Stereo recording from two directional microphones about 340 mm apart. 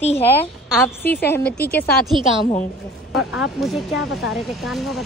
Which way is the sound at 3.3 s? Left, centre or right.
Centre.